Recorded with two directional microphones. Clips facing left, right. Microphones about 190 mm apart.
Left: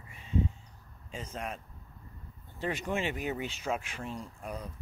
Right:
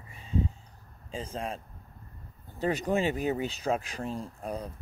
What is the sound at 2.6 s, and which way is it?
Speech, 40° right (ahead or behind).